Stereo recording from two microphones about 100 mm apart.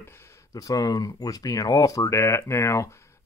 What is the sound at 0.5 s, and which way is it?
Speech, 40° left (ahead or behind).